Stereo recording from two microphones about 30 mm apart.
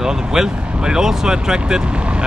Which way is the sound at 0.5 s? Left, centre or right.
Right.